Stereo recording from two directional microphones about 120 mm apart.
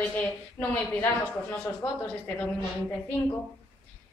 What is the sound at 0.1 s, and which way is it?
Speech, 15° left (ahead or behind).